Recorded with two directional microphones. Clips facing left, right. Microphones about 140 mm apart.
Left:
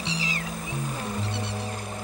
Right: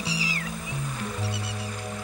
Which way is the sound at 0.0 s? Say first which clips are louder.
Even; 5° right (ahead or behind).